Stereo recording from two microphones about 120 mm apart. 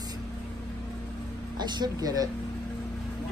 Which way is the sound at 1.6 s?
35° right (ahead or behind).